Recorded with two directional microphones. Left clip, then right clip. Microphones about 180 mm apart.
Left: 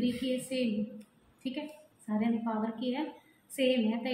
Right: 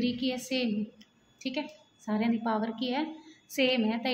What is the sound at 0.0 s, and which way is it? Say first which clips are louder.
Speech: right 1 dB; 70° right (ahead or behind).